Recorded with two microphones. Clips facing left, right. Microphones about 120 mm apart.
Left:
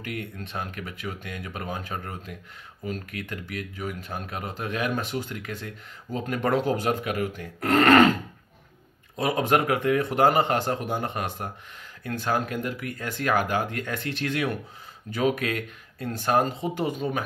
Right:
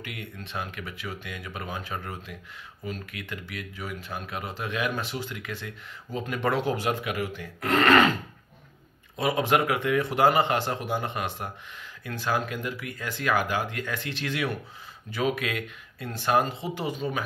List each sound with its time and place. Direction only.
0.0 s speech: 45° left (ahead or behind)
9.2 s speech: 45° left (ahead or behind)